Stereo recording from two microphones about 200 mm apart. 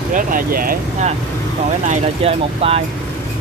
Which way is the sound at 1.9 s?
30° right (ahead or behind).